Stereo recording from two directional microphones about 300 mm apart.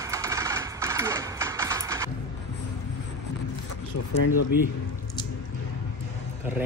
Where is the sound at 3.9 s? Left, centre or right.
Left.